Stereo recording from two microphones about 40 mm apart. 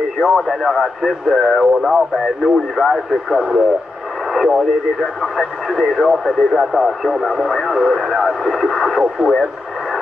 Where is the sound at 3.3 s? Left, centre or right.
Centre.